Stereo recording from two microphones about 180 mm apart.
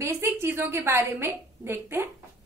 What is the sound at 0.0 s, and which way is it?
A woman's voice, 15° right (ahead or behind).